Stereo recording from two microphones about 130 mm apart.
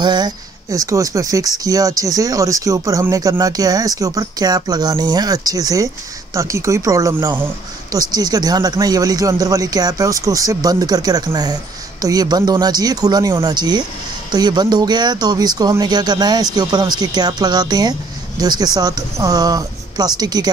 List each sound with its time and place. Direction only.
0.0 s speech: 35° right (ahead or behind)